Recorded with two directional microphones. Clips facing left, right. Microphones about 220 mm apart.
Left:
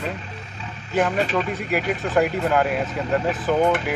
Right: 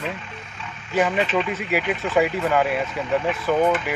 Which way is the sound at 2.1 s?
Centre (ahead or behind).